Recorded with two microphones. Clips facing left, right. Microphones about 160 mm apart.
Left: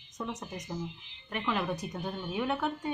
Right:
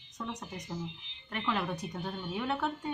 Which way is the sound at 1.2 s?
5° left (ahead or behind).